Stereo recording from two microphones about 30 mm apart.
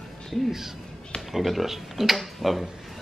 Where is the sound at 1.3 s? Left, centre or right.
Centre.